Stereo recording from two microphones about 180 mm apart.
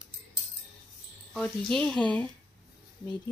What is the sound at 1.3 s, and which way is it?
Speech, 5° left (ahead or behind).